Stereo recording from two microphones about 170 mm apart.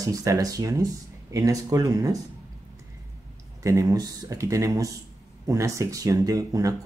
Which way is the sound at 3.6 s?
20° right (ahead or behind).